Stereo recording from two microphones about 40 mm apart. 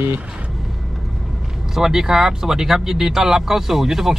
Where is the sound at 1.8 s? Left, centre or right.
Centre.